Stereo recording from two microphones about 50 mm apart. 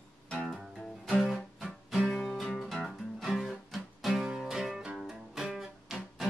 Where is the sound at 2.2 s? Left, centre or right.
Centre.